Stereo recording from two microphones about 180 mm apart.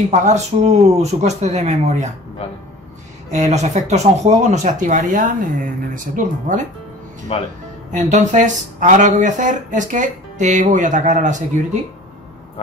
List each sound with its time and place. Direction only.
0.1 s speech: 40° right (ahead or behind)
3.3 s speech: 40° right (ahead or behind)
7.3 s speech: 35° left (ahead or behind)
7.9 s speech: 40° right (ahead or behind)